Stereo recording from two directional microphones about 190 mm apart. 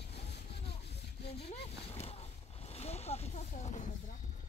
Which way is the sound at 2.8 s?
35° left (ahead or behind).